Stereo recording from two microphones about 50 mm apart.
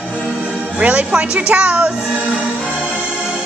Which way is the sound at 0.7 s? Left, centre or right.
Right.